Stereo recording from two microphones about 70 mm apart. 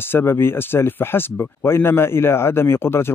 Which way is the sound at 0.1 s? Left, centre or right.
Left.